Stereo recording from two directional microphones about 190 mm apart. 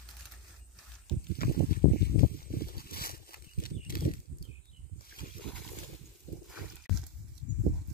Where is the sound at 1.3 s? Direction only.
50° left (ahead or behind).